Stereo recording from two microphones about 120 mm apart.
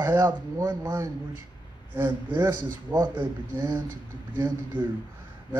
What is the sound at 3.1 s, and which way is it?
A man's voice, 15° right (ahead or behind).